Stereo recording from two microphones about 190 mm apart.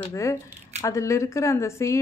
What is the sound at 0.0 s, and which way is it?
Speech, 15° left (ahead or behind).